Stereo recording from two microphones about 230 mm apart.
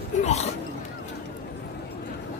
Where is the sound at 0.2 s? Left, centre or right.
Left.